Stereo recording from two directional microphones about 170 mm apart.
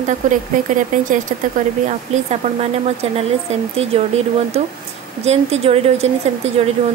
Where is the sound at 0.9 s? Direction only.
50° right (ahead or behind).